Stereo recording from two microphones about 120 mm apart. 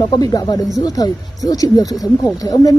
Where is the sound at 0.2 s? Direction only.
30° left (ahead or behind).